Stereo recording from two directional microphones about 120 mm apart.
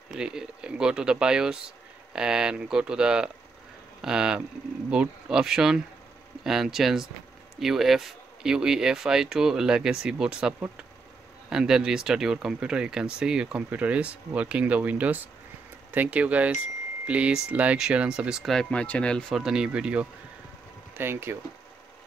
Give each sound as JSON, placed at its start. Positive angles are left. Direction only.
{"t": 0.1, "sound": "speech", "side_deg": -5}